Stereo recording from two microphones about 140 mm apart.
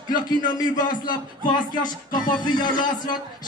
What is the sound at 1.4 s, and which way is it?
Speech, 30° left (ahead or behind).